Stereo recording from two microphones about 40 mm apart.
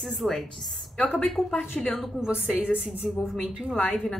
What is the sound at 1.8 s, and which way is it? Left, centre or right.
Speech, centre.